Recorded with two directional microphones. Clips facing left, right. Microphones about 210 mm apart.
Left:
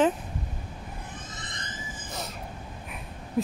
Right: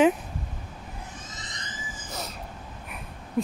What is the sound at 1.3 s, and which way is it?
Vehicle, 55° left (ahead or behind).